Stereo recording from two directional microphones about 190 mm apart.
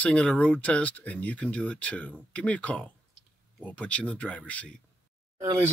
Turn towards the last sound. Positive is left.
turn(degrees=-15)  # may be behind; listen again after turning